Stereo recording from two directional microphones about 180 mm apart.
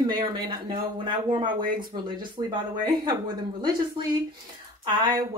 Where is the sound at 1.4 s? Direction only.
50° right (ahead or behind).